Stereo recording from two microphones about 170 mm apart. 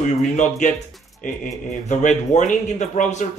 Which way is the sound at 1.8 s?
45° left (ahead or behind).